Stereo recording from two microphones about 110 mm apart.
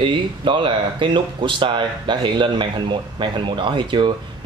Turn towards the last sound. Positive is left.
turn(degrees=-45)  # may be behind; listen again after turning